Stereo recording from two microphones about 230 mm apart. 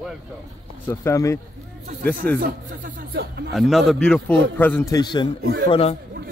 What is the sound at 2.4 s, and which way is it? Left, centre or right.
Speech, right.